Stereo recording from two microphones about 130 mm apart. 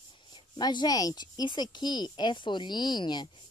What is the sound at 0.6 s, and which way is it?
A woman's voice, 35° left (ahead or behind).